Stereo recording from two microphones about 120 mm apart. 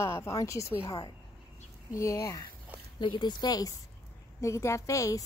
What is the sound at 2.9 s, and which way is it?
A woman's voice, 40° left (ahead or behind).